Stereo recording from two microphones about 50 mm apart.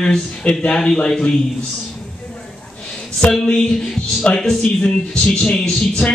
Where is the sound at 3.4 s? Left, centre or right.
Centre.